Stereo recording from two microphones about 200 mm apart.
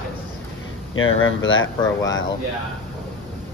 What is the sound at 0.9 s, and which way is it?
Speech, 90° left.